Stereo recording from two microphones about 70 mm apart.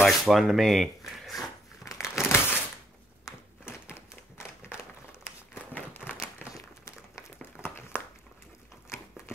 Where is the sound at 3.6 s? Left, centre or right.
Left.